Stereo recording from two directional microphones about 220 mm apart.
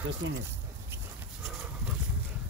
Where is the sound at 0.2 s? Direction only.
60° right (ahead or behind).